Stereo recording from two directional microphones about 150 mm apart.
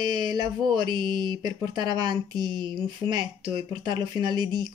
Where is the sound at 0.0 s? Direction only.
25° right (ahead or behind).